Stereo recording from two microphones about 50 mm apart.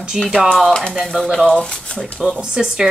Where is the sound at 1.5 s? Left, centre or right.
Left.